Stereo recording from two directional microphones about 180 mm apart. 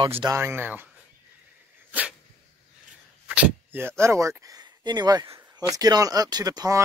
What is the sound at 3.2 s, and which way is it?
Speech, 5° right (ahead or behind).